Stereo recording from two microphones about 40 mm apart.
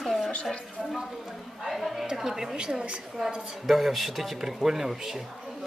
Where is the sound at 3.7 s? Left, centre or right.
Centre.